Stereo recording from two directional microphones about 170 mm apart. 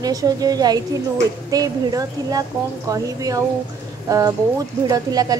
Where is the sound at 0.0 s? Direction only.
20° right (ahead or behind).